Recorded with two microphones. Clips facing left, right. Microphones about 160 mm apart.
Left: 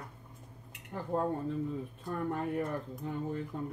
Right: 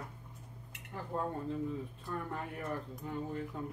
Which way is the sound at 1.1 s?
25° left (ahead or behind).